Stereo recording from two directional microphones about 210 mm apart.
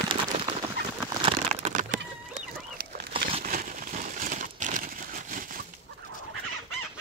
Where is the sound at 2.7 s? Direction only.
45° right (ahead or behind).